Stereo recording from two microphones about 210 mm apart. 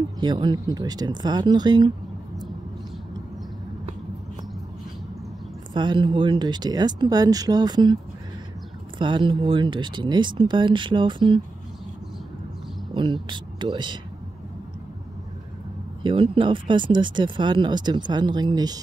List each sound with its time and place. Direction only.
0.2 s speech: 20° right (ahead or behind)
5.7 s speech: 20° right (ahead or behind)
12.9 s speech: 20° right (ahead or behind)
16.0 s speech: 25° right (ahead or behind)